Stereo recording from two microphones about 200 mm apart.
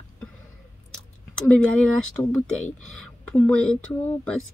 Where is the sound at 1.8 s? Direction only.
5° left (ahead or behind).